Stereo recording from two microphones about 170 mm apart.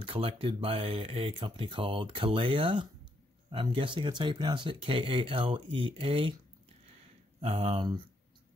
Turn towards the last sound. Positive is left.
turn(degrees=-30)  # may be behind; listen again after turning